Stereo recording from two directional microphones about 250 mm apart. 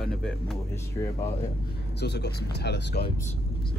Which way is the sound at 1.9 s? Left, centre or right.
Left.